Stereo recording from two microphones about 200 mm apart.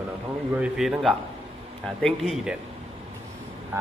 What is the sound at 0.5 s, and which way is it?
A man's voice, 5° right (ahead or behind).